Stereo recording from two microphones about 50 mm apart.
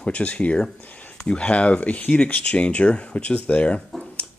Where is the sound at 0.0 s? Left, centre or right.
Left.